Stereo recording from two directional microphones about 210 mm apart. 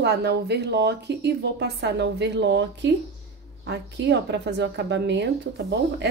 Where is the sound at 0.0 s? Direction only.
50° right (ahead or behind).